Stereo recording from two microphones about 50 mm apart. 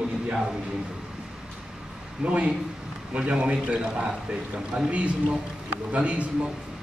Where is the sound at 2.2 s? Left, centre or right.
Right.